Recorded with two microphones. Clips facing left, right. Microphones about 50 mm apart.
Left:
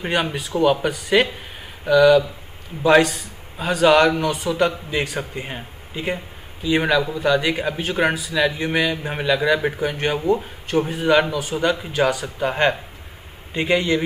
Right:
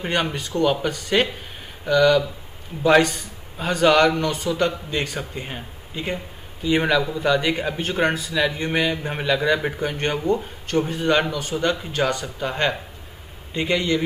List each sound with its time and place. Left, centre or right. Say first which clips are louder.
0.0 s a man's voice: left 1 dB; centre
12.4 s speech: left 6 dB; left